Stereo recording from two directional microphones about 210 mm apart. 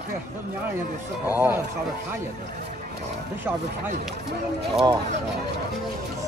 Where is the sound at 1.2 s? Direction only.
10° right (ahead or behind).